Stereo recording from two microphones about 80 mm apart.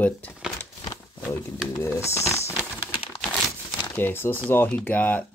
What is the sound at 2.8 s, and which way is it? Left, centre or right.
Crumpling, left.